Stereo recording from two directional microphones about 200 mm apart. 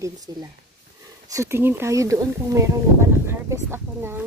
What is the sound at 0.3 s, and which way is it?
Speech, 20° right (ahead or behind).